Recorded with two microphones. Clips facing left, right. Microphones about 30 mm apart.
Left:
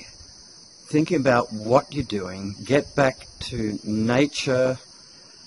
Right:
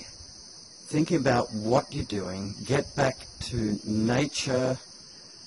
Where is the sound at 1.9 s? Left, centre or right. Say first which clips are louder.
Left 5 dB; centre.